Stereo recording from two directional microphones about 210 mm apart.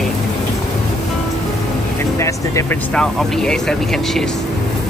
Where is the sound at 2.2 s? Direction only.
15° left (ahead or behind).